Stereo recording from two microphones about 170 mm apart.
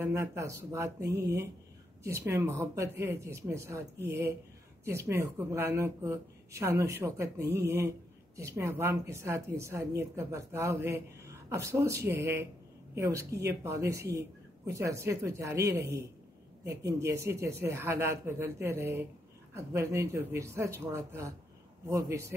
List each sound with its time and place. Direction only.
0.0 s speech: 15° right (ahead or behind)